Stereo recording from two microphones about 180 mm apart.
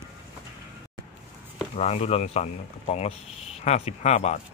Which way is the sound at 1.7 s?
40° left (ahead or behind).